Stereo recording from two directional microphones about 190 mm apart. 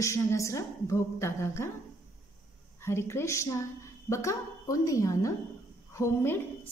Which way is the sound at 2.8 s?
15° left (ahead or behind).